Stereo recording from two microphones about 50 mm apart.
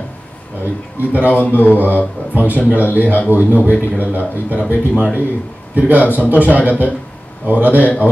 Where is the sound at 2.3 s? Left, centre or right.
Right.